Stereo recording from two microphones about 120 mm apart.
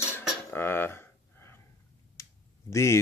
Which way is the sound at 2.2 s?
25° left (ahead or behind).